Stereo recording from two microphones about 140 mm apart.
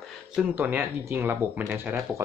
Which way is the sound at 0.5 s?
15° right (ahead or behind).